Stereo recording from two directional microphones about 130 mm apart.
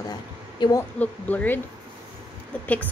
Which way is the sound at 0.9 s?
10° left (ahead or behind).